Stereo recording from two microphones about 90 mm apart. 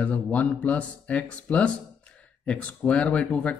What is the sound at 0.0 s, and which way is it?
Speech, 15° left (ahead or behind).